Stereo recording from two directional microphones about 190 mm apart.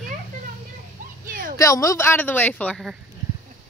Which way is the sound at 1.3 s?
50° right (ahead or behind).